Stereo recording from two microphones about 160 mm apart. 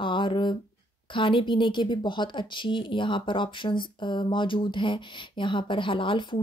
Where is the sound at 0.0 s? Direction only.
30° left (ahead or behind).